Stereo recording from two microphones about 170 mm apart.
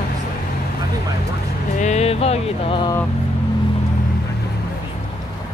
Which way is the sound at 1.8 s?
40° left (ahead or behind).